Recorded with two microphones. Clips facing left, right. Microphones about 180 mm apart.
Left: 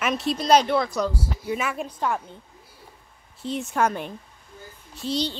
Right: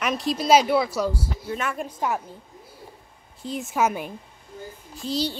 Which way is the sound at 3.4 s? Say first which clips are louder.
Even; centre (ahead or behind).